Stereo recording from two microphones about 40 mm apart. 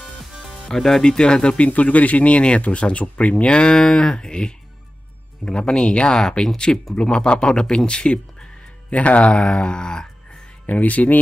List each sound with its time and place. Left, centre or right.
0.7 s speech: centre
1.0 s speech: left
1.7 s speech: left; by 7.0 s centre
7.0 s speech: left
8.9 s speech: left
10.7 s speech: left